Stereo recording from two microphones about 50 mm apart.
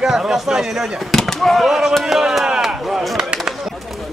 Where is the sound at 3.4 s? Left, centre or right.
Centre.